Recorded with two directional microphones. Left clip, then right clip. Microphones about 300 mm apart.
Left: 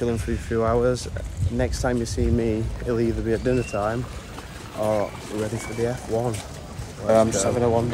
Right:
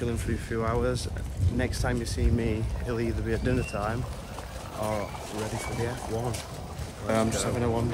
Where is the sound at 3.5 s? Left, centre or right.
Left.